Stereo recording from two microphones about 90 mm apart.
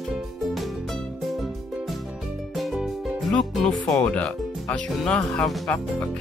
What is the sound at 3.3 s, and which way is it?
Speech, 10° left (ahead or behind).